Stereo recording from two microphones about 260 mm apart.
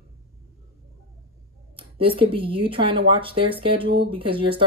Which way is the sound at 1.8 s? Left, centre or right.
Centre.